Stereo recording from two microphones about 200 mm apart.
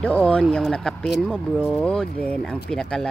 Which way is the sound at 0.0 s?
5° left (ahead or behind).